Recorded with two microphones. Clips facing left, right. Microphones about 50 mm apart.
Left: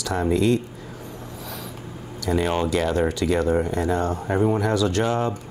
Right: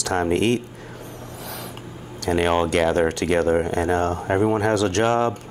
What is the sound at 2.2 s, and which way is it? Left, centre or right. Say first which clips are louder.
Speech: right 3 dB; right.